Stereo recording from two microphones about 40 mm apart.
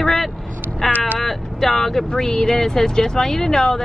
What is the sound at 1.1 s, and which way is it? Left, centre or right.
Speech, centre.